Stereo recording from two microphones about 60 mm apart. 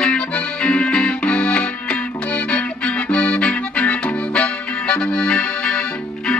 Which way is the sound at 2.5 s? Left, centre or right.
Left.